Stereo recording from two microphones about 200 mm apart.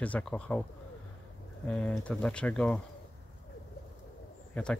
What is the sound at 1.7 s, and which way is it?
Speech, 5° left (ahead or behind).